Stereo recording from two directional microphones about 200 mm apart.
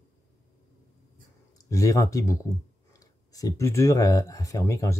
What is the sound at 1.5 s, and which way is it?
Speech, 15° left (ahead or behind).